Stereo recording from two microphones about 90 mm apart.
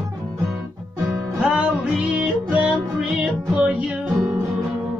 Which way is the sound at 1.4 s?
10° right (ahead or behind).